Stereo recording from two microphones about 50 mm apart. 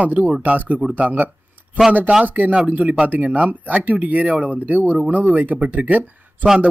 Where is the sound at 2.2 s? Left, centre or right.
Right.